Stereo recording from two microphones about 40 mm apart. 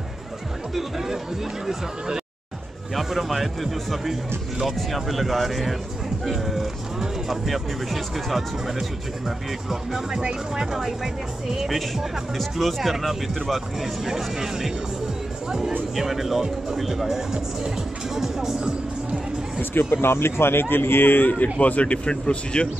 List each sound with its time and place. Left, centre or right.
0.7 s speech: centre
2.9 s speech: centre
16.0 s speech: centre
19.6 s speech: left
21.3 s speech: left